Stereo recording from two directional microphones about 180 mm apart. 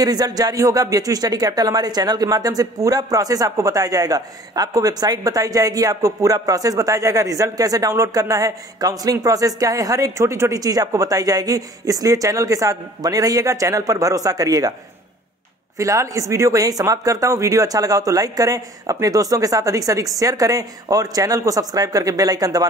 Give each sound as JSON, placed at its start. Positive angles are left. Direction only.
{"t": 0.0, "sound": "speech", "side_deg": -20}
{"t": 15.8, "sound": "speech", "side_deg": -20}